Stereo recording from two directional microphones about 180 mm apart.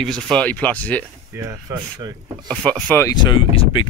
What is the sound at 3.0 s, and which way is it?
Speech, 25° left (ahead or behind).